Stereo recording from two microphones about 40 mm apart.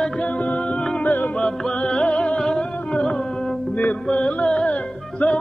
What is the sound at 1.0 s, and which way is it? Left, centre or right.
Music, left.